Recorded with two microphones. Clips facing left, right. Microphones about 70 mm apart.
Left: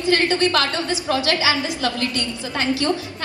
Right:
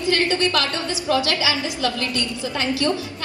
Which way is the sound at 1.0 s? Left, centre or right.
Left.